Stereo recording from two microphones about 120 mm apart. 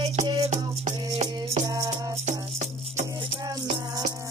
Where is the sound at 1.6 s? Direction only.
30° right (ahead or behind).